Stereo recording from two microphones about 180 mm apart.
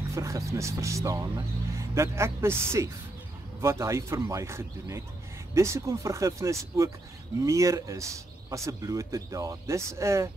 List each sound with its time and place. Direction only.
0.1 s a man's voice: 15° right (ahead or behind)